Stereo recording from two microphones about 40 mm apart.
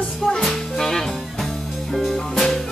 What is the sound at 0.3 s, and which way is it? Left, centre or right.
Music, centre.